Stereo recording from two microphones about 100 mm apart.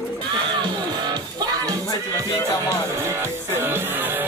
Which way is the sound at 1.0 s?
40° right (ahead or behind).